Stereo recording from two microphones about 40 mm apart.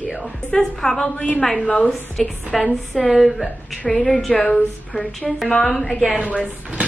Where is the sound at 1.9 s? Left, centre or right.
Centre.